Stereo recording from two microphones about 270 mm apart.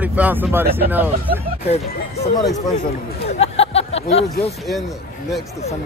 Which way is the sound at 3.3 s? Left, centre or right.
Left.